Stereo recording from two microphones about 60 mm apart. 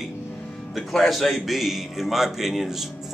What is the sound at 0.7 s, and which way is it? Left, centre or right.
Speech, centre.